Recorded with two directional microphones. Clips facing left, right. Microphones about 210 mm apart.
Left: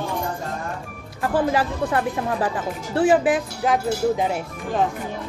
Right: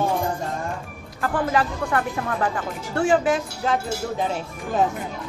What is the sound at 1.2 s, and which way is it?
Speech, 25° left (ahead or behind).